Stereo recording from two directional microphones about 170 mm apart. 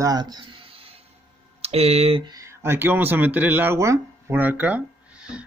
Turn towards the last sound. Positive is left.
turn(degrees=-5)  # may be behind; listen again after turning